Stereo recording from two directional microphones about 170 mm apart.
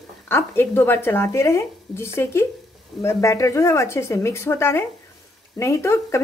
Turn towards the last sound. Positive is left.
turn(degrees=15)  # may be behind; listen again after turning